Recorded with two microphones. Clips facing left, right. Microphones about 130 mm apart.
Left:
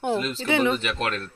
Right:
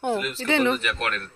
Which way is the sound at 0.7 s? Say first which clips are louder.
Left 1 dB; 25° left (ahead or behind).